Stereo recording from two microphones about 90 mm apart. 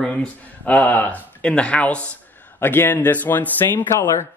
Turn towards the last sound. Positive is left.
turn(degrees=30)  # may be behind; listen again after turning